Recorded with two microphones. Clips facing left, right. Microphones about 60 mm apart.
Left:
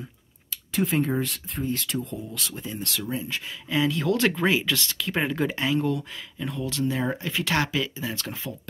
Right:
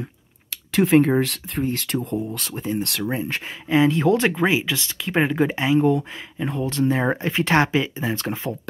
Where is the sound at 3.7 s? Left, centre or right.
Right.